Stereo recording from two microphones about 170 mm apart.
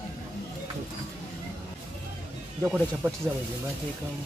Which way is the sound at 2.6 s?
5° right (ahead or behind).